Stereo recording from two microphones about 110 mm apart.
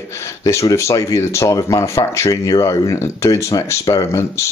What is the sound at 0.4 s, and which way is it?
Speech, 30° left (ahead or behind).